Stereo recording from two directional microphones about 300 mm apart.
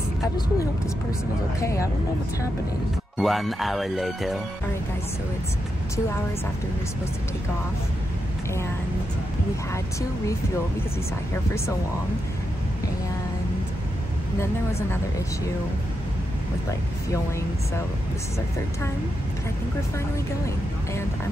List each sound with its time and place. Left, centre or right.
1.6 s a woman's voice: centre
3.2 s speech: centre
14.4 s a woman's voice: centre